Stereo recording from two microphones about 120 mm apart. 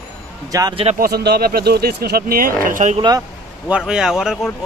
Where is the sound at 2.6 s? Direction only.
85° right.